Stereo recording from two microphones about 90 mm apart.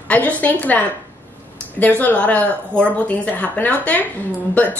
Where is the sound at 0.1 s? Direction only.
15° left (ahead or behind).